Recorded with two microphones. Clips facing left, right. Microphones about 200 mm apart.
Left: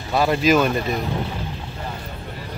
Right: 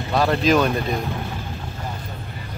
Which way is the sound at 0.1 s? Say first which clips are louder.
Left 1 dB; 5° left (ahead or behind).